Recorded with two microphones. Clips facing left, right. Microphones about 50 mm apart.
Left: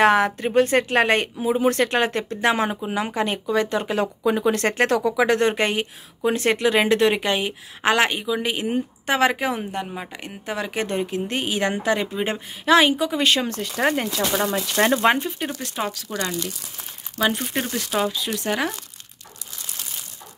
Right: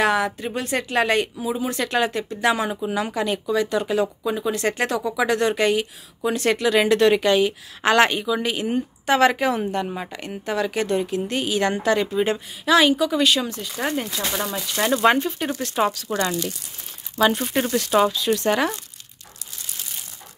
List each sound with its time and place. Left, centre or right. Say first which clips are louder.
0.0 s speech: left 3 dB; left
7.9 s speech: right 3 dB; centre
12.6 s speech: even; left
13.2 s speech: even; left
13.5 s speech: left 4 dB; left
14.2 s speech: left 4 dB; left
14.5 s speech: left 1 dB; left
15.0 s speech: right 1 dB; centre
15.7 s speech: right 9 dB; centre
16.2 s speech: right 2 dB; centre
17.4 s speech: right 3 dB; centre
18.1 s speech: right 4 dB; centre